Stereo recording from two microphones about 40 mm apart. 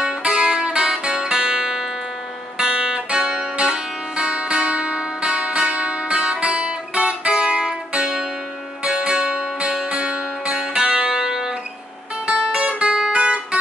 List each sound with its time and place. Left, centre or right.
0.0 s music: right
5.2 s guitar: right
8.8 s music: right
13.1 s guitar: right